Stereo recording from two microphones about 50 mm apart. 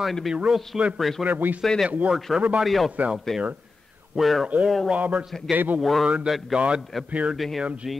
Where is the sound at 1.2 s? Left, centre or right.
Right.